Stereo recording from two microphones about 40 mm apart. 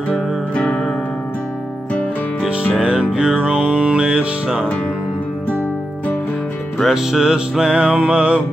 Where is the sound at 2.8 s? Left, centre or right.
Right.